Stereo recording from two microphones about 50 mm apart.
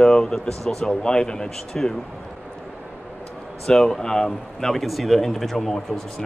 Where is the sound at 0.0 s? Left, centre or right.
Centre.